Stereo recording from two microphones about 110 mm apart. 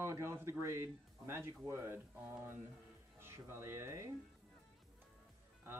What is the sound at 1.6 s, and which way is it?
Speech, 25° right (ahead or behind).